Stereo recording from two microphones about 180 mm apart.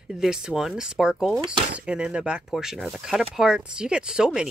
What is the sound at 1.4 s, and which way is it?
Speech, 30° right (ahead or behind).